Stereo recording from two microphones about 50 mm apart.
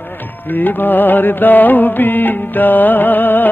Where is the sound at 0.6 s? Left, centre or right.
Left.